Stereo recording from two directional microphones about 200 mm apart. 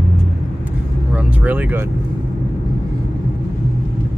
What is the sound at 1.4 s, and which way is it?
Vehicle, 10° right (ahead or behind).